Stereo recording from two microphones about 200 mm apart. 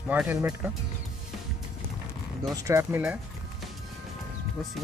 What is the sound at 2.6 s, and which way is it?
Speech, 10° right (ahead or behind).